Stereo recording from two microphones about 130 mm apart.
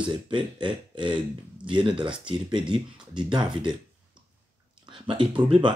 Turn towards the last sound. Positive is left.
turn(degrees=-40)  # may be behind; listen again after turning